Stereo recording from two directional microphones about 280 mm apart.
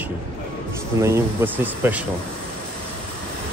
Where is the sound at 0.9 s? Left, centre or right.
Centre.